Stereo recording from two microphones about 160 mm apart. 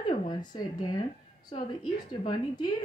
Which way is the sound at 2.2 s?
25° left (ahead or behind).